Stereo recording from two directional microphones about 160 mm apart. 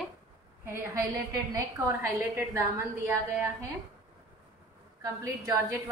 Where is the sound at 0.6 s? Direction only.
15° right (ahead or behind).